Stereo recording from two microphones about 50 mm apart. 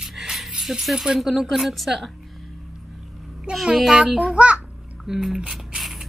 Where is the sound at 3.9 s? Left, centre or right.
Centre.